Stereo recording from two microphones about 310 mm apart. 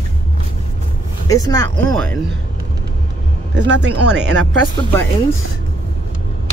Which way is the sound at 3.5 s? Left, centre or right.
Right.